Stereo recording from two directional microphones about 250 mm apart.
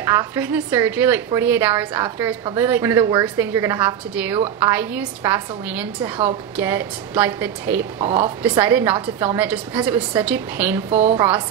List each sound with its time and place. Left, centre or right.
0.0 s a woman's voice: centre
10.9 s a woman's voice: right
11.1 s a woman's voice: centre